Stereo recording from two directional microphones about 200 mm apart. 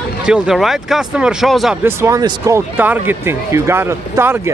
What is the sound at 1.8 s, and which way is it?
A man's voice, 15° right (ahead or behind).